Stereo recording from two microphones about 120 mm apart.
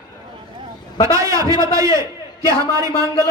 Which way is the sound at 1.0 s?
25° right (ahead or behind).